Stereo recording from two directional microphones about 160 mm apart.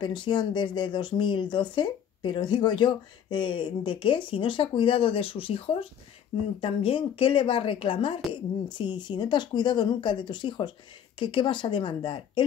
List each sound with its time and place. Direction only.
0.0 s speech: 30° left (ahead or behind)